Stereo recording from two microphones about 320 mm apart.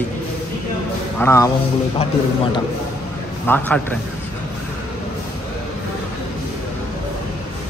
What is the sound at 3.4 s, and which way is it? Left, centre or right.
Speech, centre.